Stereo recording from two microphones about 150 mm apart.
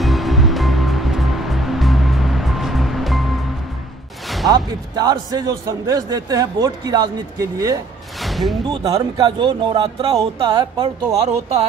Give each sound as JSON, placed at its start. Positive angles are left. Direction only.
{"t": 0.0, "sound": "music", "side_deg": 0}
{"t": 4.5, "sound": "speech", "side_deg": -25}
{"t": 8.2, "sound": "a sound", "side_deg": 0}
{"t": 8.6, "sound": "speech", "side_deg": -25}